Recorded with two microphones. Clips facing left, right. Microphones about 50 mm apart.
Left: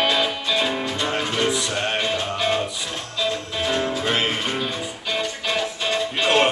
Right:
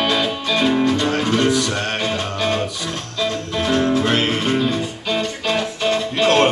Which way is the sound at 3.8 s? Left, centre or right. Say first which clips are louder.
Right 6 dB; right.